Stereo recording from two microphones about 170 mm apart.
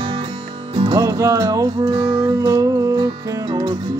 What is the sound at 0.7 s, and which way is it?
Music, 30° right (ahead or behind).